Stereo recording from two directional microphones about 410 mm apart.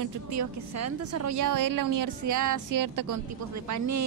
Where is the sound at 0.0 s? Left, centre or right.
Right.